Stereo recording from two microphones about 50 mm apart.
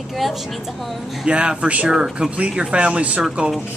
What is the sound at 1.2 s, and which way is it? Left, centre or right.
Speech, centre.